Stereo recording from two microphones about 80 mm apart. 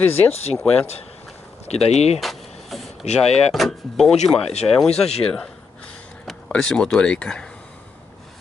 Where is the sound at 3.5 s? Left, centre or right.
Centre.